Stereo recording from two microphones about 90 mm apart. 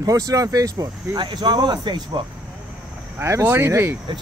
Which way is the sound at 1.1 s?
60° right (ahead or behind).